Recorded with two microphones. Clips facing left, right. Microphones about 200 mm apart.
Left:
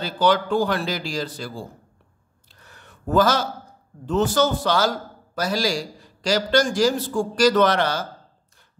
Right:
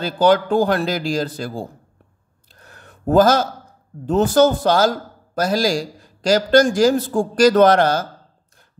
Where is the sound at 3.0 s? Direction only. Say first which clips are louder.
Right 5 dB; 45° right (ahead or behind).